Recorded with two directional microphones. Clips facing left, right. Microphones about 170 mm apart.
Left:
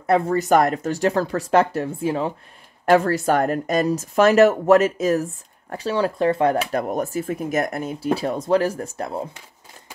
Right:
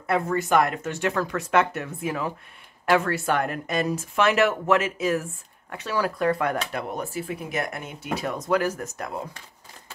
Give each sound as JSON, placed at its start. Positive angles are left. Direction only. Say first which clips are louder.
{"t": 0.0, "sound": "speech", "louder": "left 5 dB", "side_deg": 35}
{"t": 6.7, "sound": "speech", "louder": "left 7 dB", "side_deg": 45}